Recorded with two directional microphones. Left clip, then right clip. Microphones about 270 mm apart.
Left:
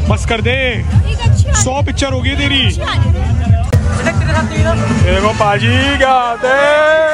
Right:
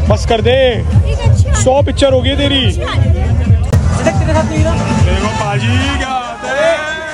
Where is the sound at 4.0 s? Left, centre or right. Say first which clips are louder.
Right 3 dB; right.